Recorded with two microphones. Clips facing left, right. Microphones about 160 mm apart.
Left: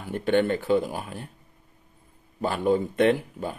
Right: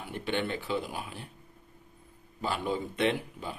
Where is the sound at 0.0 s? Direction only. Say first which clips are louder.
Left 9 dB; 45° left (ahead or behind).